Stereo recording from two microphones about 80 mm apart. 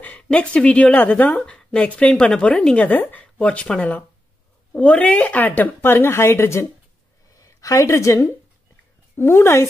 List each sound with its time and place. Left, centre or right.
0.0 s speech: centre
7.3 s a woman's voice: left